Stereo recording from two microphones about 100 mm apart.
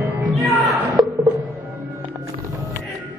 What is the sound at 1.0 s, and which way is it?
Music, 45° right (ahead or behind).